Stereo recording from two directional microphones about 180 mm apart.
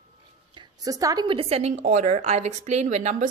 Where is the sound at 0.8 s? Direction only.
20° right (ahead or behind).